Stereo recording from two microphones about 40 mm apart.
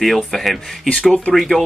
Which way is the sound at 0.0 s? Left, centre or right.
Centre.